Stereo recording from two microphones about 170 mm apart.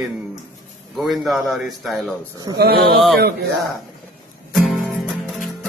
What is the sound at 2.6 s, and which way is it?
Speech, 70° right (ahead or behind).